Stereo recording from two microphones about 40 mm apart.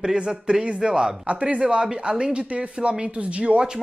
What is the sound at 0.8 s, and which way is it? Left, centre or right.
Speech, centre.